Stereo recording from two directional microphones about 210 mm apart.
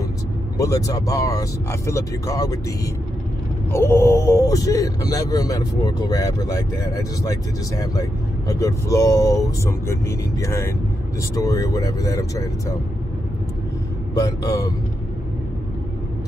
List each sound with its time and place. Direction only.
0.6 s speech: 15° left (ahead or behind)
14.1 s speech: 15° left (ahead or behind)